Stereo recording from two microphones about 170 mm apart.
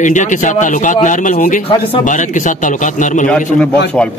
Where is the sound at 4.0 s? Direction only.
5° left (ahead or behind).